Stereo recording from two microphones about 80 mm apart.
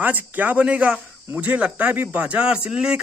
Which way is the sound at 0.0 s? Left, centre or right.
Right.